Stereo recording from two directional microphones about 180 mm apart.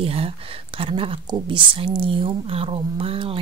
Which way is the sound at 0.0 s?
35° right (ahead or behind).